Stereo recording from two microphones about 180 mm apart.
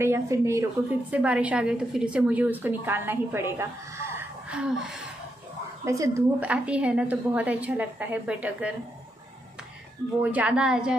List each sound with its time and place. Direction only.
0.0 s a woman's voice: 15° right (ahead or behind)
5.9 s a woman's voice: 15° right (ahead or behind)
10.2 s speech: 10° right (ahead or behind)